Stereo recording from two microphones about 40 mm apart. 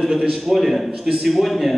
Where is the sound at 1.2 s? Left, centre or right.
Centre.